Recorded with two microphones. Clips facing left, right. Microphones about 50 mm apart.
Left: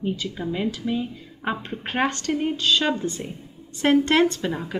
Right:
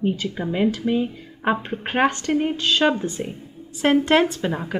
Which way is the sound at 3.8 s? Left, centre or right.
Centre.